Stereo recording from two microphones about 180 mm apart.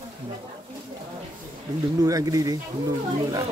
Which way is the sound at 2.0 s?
20° right (ahead or behind).